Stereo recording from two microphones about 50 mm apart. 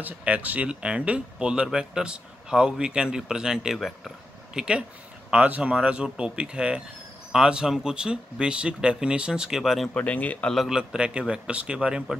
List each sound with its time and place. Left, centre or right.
0.2 s speech: right; by 4.1 s centre
4.6 s speech: centre
9.9 s speech: left
10.7 s speech: centre